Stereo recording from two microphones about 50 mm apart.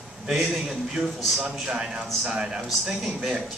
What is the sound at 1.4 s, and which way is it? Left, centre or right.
A man's voice, centre.